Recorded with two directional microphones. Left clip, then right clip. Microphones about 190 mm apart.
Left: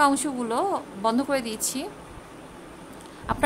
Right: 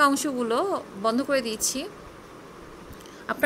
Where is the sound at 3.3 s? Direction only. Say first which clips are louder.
Left 2 dB; 5° right (ahead or behind).